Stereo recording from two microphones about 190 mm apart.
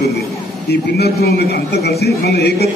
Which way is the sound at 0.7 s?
60° left (ahead or behind).